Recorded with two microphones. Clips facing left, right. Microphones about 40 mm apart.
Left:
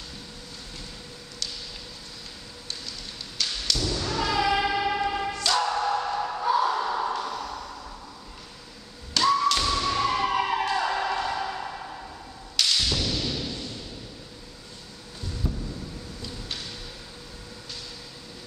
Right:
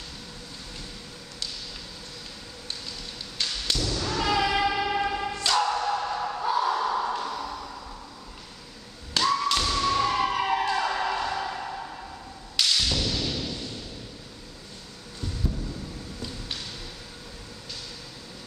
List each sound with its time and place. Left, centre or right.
3.4 s thump: right
3.7 s a sound: centre
9.2 s thump: centre
12.5 s whip: centre
13.2 s a sound: centre
15.4 s vehicle: centre